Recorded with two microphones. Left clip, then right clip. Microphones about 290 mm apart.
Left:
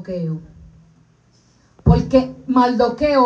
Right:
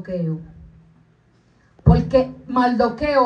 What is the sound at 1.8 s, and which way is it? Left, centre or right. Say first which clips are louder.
Speech: left 1 dB; left.